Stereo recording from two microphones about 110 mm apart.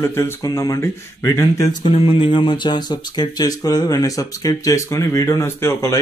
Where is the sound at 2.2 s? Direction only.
50° left (ahead or behind); by 6.0 s 25° left (ahead or behind).